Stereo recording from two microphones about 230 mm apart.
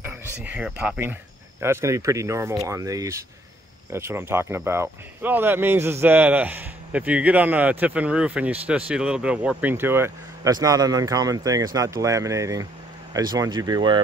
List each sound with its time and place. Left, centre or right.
0.0 s speech: centre